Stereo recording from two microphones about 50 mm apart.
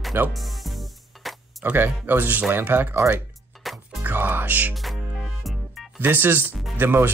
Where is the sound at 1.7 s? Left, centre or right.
Right.